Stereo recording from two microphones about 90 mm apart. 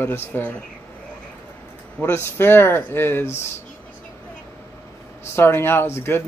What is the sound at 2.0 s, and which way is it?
Speech, 25° left (ahead or behind).